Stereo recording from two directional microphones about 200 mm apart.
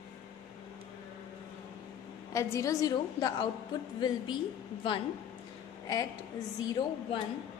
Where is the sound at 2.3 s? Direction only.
15° left (ahead or behind).